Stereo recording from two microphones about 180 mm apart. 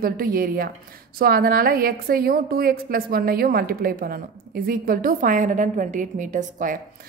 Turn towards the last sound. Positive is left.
turn(degrees=-45)  # may be behind; listen again after turning